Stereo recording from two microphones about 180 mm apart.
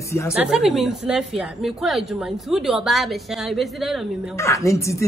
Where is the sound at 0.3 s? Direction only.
5° right (ahead or behind).